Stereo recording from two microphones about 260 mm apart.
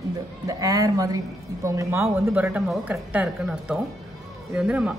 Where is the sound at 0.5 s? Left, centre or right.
Centre.